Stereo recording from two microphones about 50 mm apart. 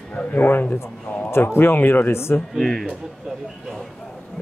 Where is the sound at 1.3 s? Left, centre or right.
Left.